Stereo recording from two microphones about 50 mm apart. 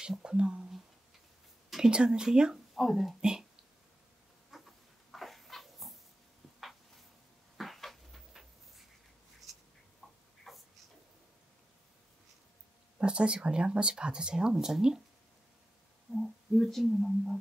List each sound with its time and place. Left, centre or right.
0.0 s speech: centre
1.8 s a woman's voice: centre
2.7 s speech: centre
3.2 s speech: centre
4.5 s dog: centre
7.5 s a sound: centre
10.5 s a sound: centre
13.0 s speech: centre
16.2 s speech: centre